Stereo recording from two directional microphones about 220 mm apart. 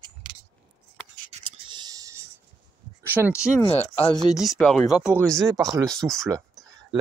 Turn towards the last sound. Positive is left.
turn(degrees=0)  # may be behind; listen again after turning